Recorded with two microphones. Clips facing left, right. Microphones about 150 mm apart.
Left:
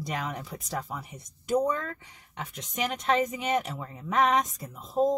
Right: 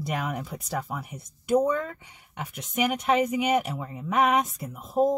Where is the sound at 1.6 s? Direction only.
15° right (ahead or behind).